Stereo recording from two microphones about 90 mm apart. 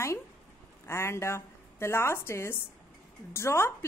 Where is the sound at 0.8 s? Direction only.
30° left (ahead or behind).